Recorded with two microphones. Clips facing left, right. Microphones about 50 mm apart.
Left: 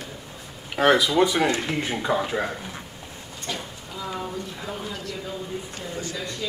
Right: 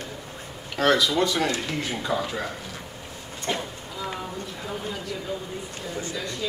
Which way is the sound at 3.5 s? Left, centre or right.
Right.